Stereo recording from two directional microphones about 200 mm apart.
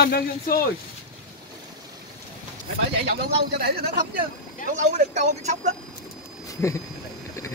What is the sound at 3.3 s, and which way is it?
Speech, 50° right (ahead or behind).